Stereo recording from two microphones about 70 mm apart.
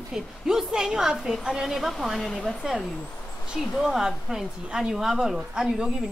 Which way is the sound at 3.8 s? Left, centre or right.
Centre.